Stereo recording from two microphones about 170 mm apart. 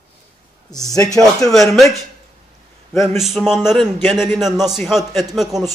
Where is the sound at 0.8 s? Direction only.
20° left (ahead or behind).